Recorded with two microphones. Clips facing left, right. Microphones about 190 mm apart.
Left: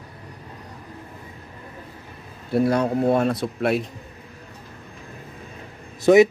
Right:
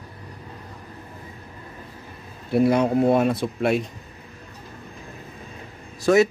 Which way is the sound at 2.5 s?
10° right (ahead or behind).